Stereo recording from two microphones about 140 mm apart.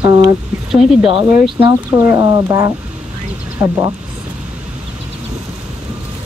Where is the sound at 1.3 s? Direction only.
15° right (ahead or behind).